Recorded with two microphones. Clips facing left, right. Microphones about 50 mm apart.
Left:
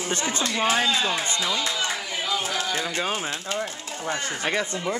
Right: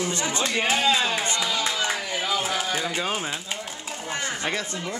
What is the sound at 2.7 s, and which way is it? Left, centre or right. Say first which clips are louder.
Speech: even; centre.